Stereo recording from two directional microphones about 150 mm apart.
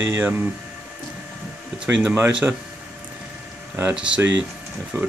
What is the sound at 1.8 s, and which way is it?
Speech, 10° right (ahead or behind).